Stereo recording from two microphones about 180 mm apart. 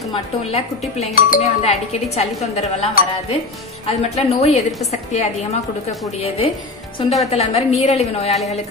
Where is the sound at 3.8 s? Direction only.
35° left (ahead or behind).